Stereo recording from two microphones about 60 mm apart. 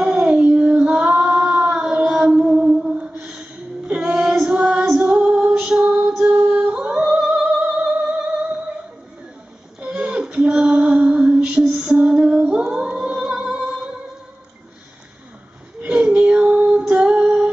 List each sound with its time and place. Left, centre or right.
0.0 s child singing: centre
3.0 s music: centre
3.9 s female singing: centre
5.6 s music: centre
9.8 s female singing: centre
12.5 s a sound: centre
13.4 s music: centre
15.8 s a sound: right
16.9 s female singing: centre